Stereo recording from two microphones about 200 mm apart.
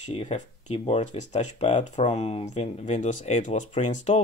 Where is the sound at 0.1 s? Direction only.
30° left (ahead or behind).